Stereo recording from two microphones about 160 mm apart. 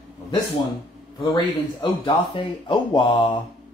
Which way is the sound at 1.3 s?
30° left (ahead or behind).